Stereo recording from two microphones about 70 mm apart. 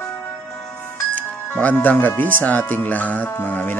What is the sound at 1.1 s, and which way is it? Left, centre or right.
Speech, left.